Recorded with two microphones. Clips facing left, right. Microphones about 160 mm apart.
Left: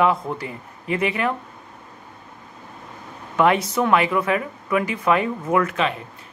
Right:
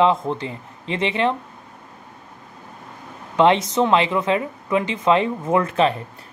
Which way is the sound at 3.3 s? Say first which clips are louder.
Right 2 dB; 20° right (ahead or behind).